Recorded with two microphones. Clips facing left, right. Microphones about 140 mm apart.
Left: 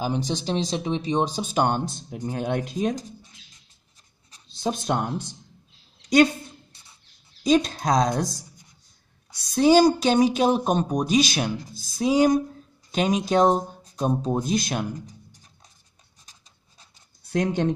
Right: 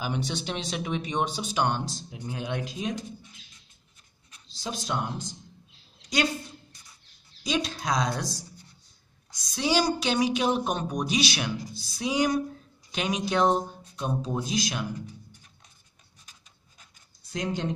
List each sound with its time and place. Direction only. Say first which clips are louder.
0.0 s speech: left 5 dB; 35° left (ahead or behind)
1.3 s a woman's voice: left 4 dB; 45° left (ahead or behind)
4.5 s speech: left 7 dB; 55° left (ahead or behind)
7.4 s a woman's voice: left 8 dB; 45° left (ahead or behind)
9.3 s a woman's voice: left 10 dB; 60° left (ahead or behind); by 15.4 s 45° left (ahead or behind)
16.3 s a sound: left 1 dB; 35° left (ahead or behind)
17.3 s speech: left 7 dB; 55° left (ahead or behind)